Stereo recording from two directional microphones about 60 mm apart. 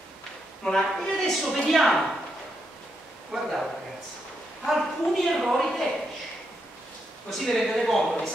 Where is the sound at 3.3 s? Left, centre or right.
Centre.